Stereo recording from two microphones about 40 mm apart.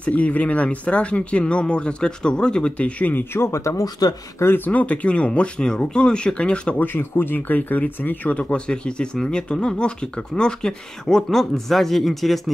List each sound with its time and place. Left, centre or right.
0.0 s speech: left
3.0 s speech: left
4.6 s speech: left
6.8 s speech: left
7.3 s speech: left; by 12.4 s centre